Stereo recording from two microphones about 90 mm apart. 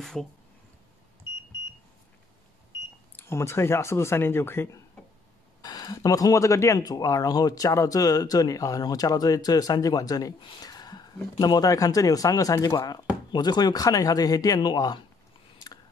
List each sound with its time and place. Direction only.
0.0 s speech: 5° left (ahead or behind)
3.2 s speech: 30° left (ahead or behind)
5.6 s speech: 45° left (ahead or behind)